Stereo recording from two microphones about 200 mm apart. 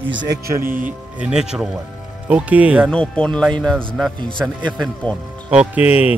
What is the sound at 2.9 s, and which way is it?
Speech, 5° left (ahead or behind).